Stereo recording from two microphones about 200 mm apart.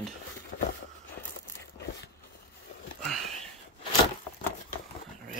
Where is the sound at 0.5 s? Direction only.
40° left (ahead or behind).